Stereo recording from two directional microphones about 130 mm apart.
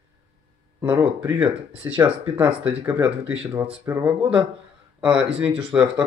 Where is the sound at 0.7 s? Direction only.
20° right (ahead or behind).